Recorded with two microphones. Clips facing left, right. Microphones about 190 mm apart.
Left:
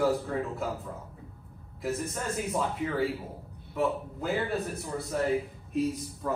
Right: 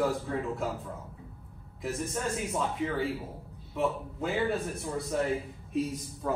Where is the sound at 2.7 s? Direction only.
Centre (ahead or behind).